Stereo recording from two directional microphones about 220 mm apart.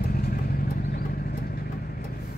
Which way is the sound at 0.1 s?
40° left (ahead or behind).